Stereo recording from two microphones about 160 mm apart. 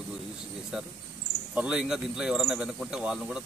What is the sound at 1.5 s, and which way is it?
A man's voice, 5° right (ahead or behind).